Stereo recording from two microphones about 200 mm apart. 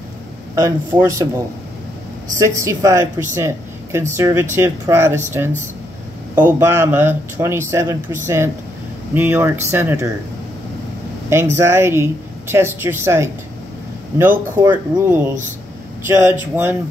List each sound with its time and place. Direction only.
0.6 s speech: 15° right (ahead or behind)
3.3 s a sound: 10° right (ahead or behind)
4.2 s speech: 10° right (ahead or behind)
11.5 s speech: 15° right (ahead or behind)